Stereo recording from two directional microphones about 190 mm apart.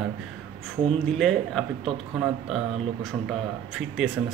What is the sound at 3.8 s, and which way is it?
Speech, centre (ahead or behind).